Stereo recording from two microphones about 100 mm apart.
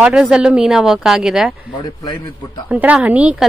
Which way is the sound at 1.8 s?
45° left (ahead or behind).